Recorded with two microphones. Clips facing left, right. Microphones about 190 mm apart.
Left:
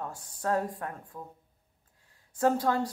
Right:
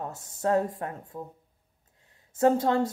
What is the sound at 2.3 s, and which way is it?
Speech, 25° right (ahead or behind).